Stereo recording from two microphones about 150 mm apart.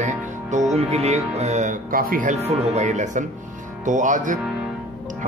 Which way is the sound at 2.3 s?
45° right (ahead or behind).